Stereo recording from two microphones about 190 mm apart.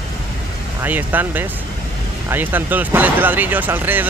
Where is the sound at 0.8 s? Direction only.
10° right (ahead or behind).